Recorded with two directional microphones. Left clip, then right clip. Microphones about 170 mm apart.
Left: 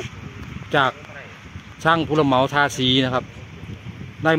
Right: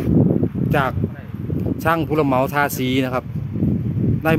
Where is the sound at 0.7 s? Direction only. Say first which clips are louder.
Left 4 dB; 15° right (ahead or behind).